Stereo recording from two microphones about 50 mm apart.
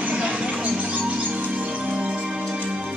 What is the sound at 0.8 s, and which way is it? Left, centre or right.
Music, right.